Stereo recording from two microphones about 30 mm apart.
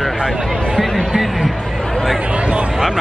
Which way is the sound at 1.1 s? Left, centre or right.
Centre.